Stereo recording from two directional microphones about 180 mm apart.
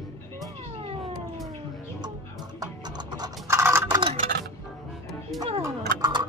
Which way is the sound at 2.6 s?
25° right (ahead or behind).